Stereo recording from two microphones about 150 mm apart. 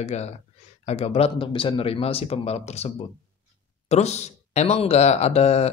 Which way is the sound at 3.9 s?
50° left (ahead or behind).